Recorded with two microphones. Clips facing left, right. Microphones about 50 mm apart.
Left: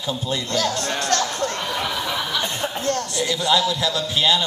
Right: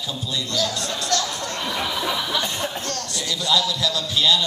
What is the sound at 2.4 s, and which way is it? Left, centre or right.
A man's voice, left.